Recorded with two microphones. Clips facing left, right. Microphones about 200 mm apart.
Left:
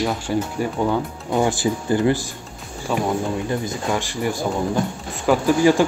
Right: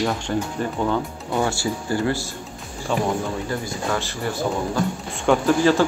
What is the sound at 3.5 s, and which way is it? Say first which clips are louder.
Speech: left 2 dB; 20° left (ahead or behind).